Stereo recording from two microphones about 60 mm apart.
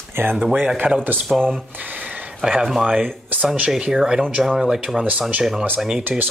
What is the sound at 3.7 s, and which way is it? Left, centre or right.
Speech, centre.